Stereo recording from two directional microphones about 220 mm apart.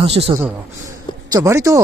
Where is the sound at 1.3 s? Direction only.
15° right (ahead or behind).